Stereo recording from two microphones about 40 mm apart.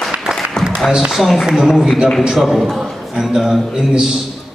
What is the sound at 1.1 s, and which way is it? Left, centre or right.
A man's voice, centre.